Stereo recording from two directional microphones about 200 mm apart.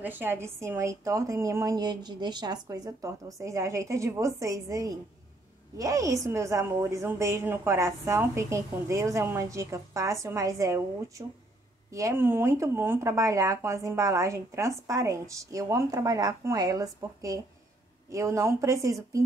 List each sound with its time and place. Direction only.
0.0 s speech: 10° right (ahead or behind)